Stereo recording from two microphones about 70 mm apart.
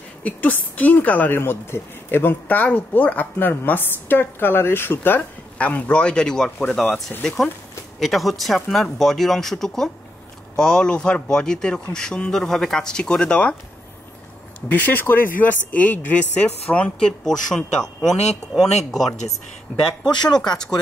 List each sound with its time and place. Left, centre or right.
0.2 s a woman's voice: left
6.8 s a woman's voice: left
8.0 s a man's voice: centre
14.7 s a woman's voice: left
17.2 s speech: centre
20.3 s a man's voice: centre